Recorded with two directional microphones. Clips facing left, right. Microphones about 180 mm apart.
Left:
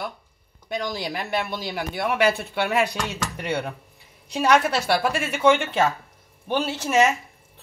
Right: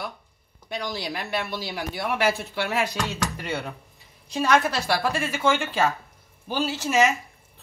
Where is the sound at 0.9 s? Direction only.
55° left (ahead or behind).